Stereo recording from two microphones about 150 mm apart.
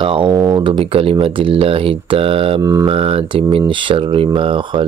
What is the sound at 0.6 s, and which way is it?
Speech, 35° right (ahead or behind).